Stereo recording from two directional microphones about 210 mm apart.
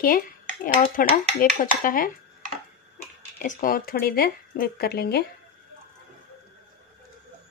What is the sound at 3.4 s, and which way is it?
Speech, 40° left (ahead or behind).